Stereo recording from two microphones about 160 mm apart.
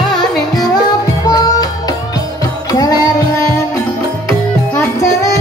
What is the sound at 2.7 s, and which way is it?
Music, 25° left (ahead or behind).